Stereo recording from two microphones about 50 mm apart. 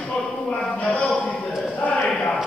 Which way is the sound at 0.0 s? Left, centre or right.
Left.